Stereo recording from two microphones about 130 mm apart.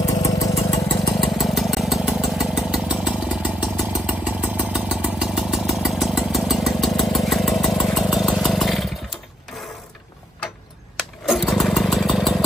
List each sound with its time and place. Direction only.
0.2 s engine: 25° left (ahead or behind)
1.2 s engine: centre (ahead or behind)
4.6 s vehicle: 10° right (ahead or behind)
11.0 s a sound: centre (ahead or behind)